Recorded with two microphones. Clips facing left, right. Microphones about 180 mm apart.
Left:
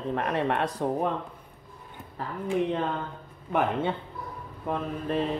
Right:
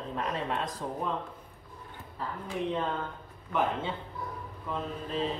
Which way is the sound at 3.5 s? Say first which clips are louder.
Left 4 dB; 60° left (ahead or behind).